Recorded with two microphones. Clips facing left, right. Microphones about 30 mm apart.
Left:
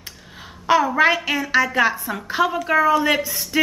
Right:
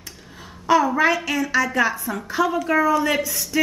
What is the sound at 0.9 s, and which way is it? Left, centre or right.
Speech, left.